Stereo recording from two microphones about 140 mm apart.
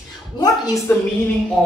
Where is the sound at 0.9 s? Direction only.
15° left (ahead or behind).